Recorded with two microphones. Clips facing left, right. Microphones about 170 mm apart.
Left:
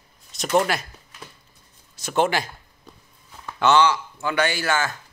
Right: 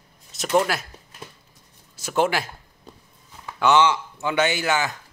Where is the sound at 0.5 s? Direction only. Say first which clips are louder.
Even; 5° right (ahead or behind).